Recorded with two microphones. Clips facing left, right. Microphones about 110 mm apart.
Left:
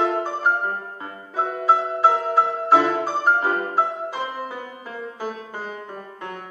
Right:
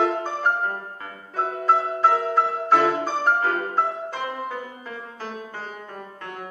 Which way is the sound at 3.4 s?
20° left (ahead or behind).